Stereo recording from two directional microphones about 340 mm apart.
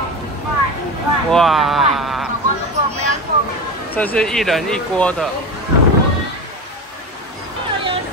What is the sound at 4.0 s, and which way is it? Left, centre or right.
Speech, centre.